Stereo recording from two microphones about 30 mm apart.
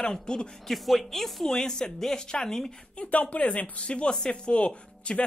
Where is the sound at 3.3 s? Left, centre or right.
Left.